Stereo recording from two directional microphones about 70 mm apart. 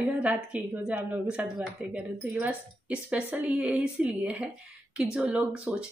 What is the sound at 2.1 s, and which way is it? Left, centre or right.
Speech, right.